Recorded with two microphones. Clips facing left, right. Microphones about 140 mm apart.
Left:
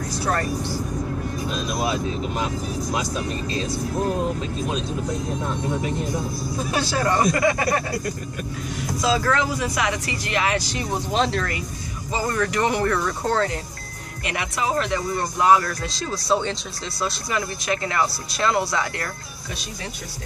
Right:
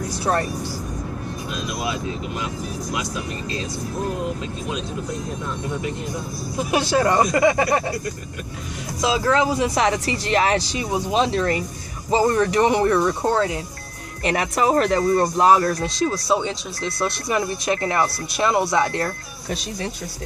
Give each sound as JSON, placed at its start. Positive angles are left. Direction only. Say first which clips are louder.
{"t": 0.2, "sound": "speech", "louder": "right 3 dB", "side_deg": -25}
{"t": 1.8, "sound": "speech", "louder": "left 3 dB", "side_deg": 35}
{"t": 6.6, "sound": "speech", "louder": "right 5 dB", "side_deg": -20}
{"t": 9.0, "sound": "speech", "louder": "right 3 dB", "side_deg": -20}
{"t": 10.7, "sound": "speech", "louder": "right 3 dB", "side_deg": -10}
{"t": 12.1, "sound": "speech", "louder": "right 6 dB", "side_deg": -25}
{"t": 14.2, "sound": "speech", "louder": "right 6 dB", "side_deg": -40}
{"t": 15.8, "sound": "speech", "louder": "right 6 dB", "side_deg": -10}
{"t": 17.0, "sound": "speech", "louder": "right 3 dB", "side_deg": -25}